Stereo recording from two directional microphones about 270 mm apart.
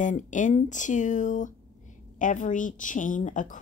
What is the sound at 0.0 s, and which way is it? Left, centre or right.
A woman's voice, left.